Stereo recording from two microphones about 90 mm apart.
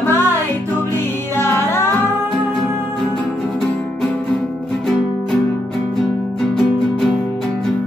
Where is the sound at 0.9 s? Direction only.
25° left (ahead or behind).